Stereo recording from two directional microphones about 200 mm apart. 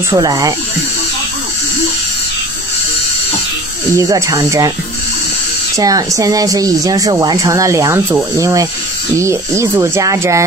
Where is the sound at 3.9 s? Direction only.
15° right (ahead or behind).